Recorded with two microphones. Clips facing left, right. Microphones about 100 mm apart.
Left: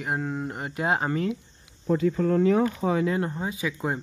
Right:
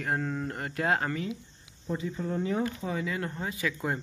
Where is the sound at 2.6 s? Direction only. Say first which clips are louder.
Left 8 dB; 60° left (ahead or behind).